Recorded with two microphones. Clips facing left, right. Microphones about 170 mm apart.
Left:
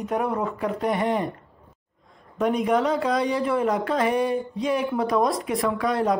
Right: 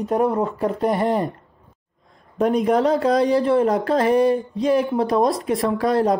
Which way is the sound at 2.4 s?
35° right (ahead or behind).